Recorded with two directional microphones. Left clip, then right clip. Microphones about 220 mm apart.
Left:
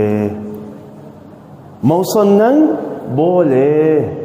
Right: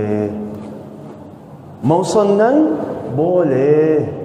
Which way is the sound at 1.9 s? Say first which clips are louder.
Left 2 dB; 40° left (ahead or behind).